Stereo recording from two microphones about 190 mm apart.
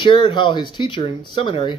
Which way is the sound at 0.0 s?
25° left (ahead or behind).